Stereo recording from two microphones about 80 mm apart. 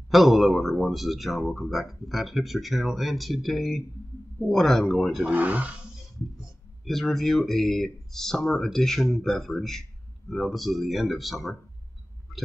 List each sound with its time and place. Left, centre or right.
0.1 s speech: centre
5.2 s speech: centre
6.8 s speech: centre